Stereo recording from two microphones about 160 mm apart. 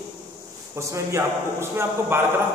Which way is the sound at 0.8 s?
20° right (ahead or behind).